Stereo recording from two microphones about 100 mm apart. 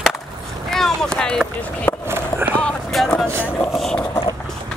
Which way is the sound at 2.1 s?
20° right (ahead or behind).